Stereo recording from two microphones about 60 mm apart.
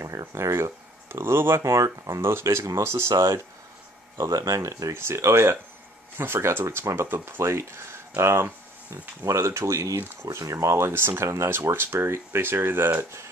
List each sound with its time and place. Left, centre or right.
0.0 s speech: right
1.6 s speech: right
2.2 s speech: right
4.2 s speech: right
4.9 s speech: right
11.6 s speech: right